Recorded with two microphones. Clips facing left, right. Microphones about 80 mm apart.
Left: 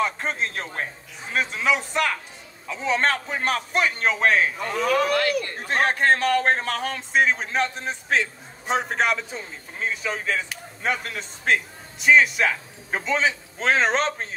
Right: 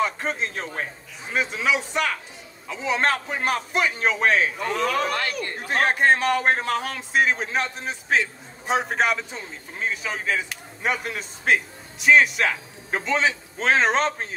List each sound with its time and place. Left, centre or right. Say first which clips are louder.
0.0 s a man's voice: even; centre
5.1 s a man's voice: left 5 dB; right
5.9 s a man's voice: right 1 dB; centre